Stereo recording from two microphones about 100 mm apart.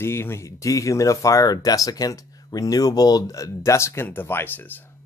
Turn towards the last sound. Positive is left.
turn(degrees=20)  # may be behind; listen again after turning